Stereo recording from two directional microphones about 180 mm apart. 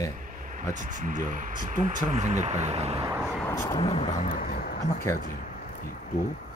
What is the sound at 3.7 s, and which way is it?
Speech, 30° left (ahead or behind).